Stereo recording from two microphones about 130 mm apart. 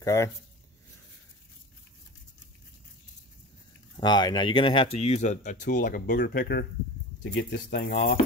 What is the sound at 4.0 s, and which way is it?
Speech, 35° left (ahead or behind).